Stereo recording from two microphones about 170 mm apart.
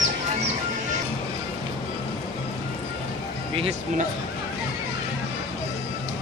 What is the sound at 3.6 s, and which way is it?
Music, 40° right (ahead or behind).